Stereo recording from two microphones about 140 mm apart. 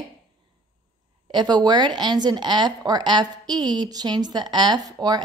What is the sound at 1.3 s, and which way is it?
A woman's voice, 30° right (ahead or behind).